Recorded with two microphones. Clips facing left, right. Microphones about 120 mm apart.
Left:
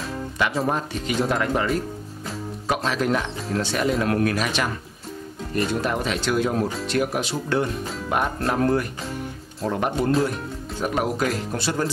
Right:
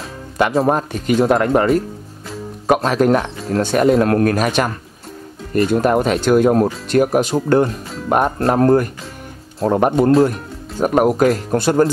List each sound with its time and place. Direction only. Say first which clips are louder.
0.4 s speech: right 8 dB; 55° right (ahead or behind)